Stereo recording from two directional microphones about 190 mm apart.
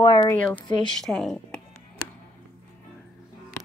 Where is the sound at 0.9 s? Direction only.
5° left (ahead or behind).